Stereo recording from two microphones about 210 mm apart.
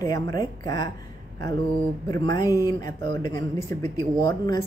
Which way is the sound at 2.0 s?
15° left (ahead or behind).